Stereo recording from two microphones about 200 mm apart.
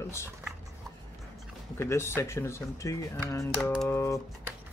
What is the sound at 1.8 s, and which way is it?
Speech, 10° left (ahead or behind).